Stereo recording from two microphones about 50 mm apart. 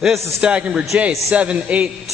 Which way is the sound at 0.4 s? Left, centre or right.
Right.